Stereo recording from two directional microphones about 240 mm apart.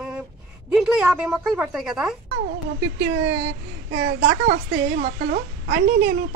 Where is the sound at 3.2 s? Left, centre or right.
Right.